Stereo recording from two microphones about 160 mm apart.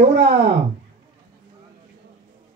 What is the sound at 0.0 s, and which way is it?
Speech, 90° right.